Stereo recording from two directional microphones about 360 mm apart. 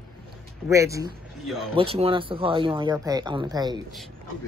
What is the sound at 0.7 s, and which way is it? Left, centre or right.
Speech, centre.